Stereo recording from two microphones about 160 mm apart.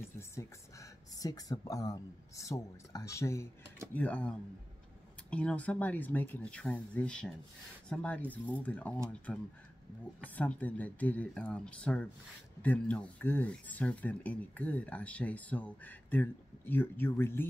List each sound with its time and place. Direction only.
0.2 s speech: 15° left (ahead or behind)